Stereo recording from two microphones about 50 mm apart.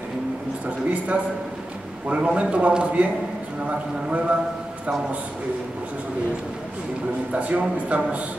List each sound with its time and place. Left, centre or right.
0.7 s a man's voice: right
7.3 s a man's voice: right